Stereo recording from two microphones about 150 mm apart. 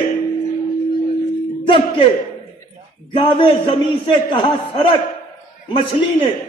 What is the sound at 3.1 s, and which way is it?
A man's voice, 30° left (ahead or behind).